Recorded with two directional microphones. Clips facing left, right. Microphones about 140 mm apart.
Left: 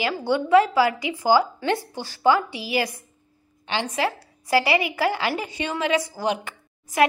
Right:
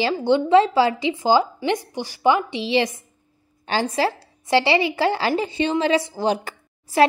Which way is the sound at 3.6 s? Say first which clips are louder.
Right 4 dB; 40° right (ahead or behind).